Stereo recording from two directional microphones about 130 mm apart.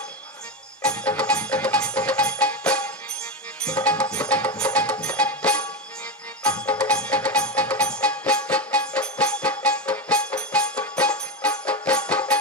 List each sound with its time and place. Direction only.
0.8 s music: 10° left (ahead or behind)